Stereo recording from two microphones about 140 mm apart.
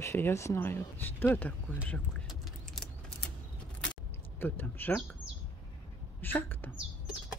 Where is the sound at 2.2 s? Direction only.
Centre (ahead or behind).